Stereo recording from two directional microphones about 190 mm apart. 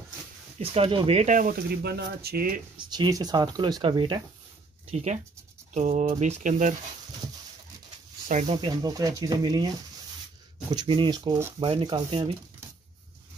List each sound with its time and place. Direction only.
0.6 s speech: 30° right (ahead or behind); by 2.6 s 50° right (ahead or behind)
2.8 s speech: 25° right (ahead or behind)
4.9 s speech: 40° right (ahead or behind)
8.5 s speech: 25° right (ahead or behind)